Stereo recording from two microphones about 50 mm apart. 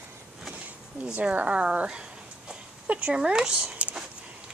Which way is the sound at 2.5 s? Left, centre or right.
Right.